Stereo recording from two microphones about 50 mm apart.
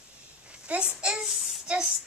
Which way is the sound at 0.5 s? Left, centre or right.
Right.